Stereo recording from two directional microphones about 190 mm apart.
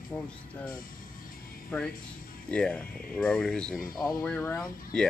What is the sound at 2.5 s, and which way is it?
Speech, 5° left (ahead or behind).